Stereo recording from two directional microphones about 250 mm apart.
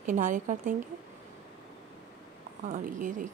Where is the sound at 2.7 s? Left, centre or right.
Right.